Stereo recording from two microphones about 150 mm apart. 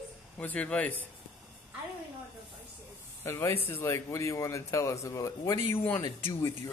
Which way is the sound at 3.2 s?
20° left (ahead or behind).